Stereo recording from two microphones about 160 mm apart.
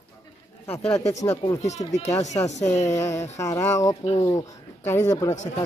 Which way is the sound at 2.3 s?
20° left (ahead or behind).